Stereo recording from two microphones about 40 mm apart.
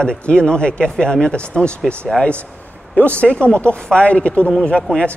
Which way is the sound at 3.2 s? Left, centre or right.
Left.